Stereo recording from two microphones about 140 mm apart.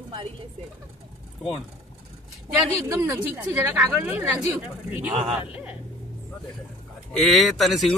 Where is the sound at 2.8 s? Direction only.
20° right (ahead or behind).